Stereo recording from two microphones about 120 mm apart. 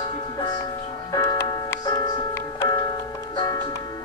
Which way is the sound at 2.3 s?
20° left (ahead or behind).